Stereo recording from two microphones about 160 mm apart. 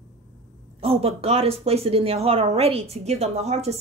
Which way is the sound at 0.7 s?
40° right (ahead or behind).